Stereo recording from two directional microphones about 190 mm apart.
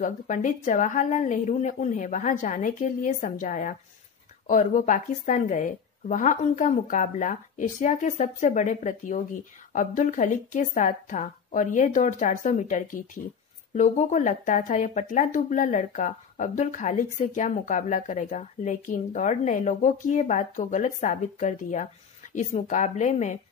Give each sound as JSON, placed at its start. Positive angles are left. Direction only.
{"t": 0.0, "sound": "a woman's voice", "side_deg": 45}